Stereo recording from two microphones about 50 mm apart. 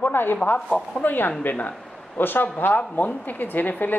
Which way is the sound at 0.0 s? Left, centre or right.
Left.